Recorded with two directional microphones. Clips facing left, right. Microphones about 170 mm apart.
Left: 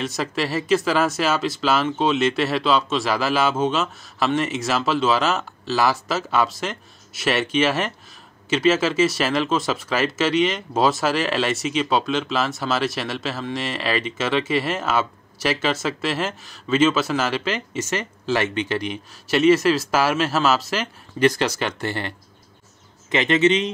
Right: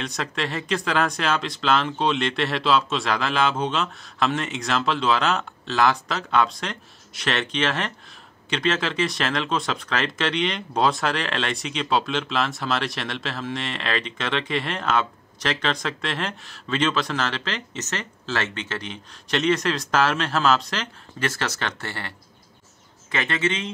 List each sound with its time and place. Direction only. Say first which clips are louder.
0.0 s speech: left 4 dB; 5° left (ahead or behind)
23.1 s a man's voice: left 8 dB; 20° left (ahead or behind)